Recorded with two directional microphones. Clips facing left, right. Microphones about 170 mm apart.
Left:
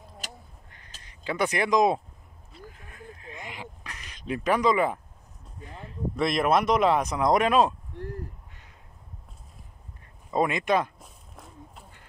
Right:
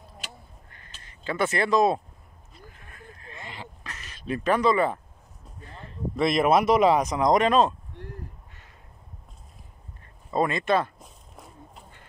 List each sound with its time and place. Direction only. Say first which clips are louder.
0.7 s quack: right 1 dB; 15° left (ahead or behind)
1.0 s speech: right 1 dB; 15° left (ahead or behind)
2.9 s quack: left 2 dB; 15° left (ahead or behind)
5.6 s a sound: left 2 dB; 10° left (ahead or behind)
6.1 s speech: right 3 dB; centre (ahead or behind)
10.3 s speech: right 1 dB; 15° left (ahead or behind)